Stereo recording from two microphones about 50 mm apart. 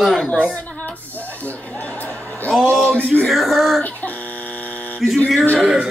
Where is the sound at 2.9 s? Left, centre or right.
Right.